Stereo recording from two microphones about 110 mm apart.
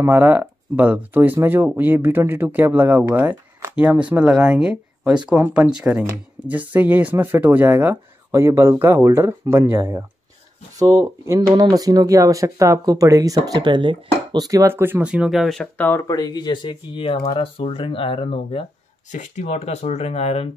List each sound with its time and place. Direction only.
0.0 s speech: 15° right (ahead or behind)
13.5 s speech: 45° right (ahead or behind)
14.7 s speech: 20° right (ahead or behind); by 15.7 s centre (ahead or behind)
16.0 s speech: 35° left (ahead or behind); by 18.7 s 55° left (ahead or behind)
19.1 s speech: 85° left; by 20.4 s 70° left (ahead or behind)